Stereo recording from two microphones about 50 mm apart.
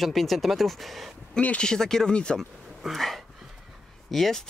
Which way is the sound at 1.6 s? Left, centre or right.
Centre.